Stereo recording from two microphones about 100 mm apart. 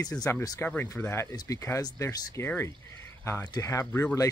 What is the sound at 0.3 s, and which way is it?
Speech, 20° left (ahead or behind).